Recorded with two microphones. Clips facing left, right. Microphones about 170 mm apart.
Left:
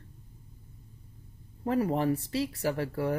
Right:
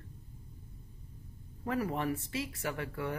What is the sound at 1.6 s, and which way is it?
Speech, 30° left (ahead or behind).